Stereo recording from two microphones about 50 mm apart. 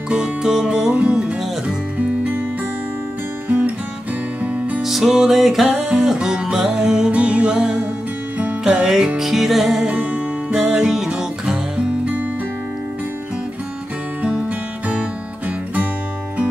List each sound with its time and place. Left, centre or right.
0.1 s music: centre
2.0 s music: right
3.4 s music: right
4.8 s music: centre
5.7 s music: centre
9.8 s music: right
10.7 s music: centre
14.9 s music: right